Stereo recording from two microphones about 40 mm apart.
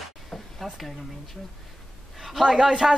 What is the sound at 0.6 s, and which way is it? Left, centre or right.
Speech, centre.